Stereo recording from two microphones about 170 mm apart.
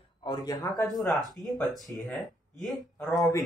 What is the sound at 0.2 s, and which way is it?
Speech, 25° left (ahead or behind).